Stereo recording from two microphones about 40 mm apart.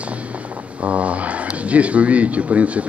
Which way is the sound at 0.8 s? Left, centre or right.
Right.